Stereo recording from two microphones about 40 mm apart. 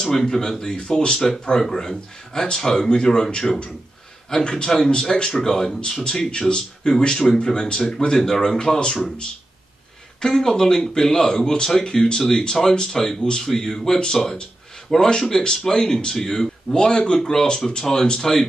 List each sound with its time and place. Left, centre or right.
0.0 s speech: centre
8.4 s speech: centre
10.2 s speech: centre